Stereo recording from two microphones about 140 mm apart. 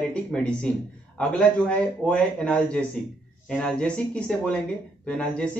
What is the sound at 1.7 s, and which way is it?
Speech, 10° left (ahead or behind).